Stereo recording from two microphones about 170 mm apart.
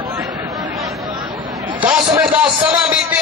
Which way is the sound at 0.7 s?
Centre (ahead or behind).